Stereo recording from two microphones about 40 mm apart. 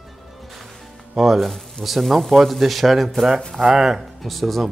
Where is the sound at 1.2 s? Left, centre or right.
Centre.